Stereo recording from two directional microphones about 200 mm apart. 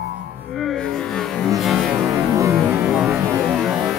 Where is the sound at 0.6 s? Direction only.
Centre (ahead or behind).